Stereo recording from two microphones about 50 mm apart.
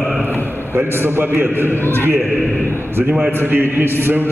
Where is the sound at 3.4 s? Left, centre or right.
Right.